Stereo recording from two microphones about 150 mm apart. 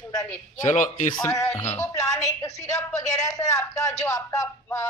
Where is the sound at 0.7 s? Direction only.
55° left (ahead or behind).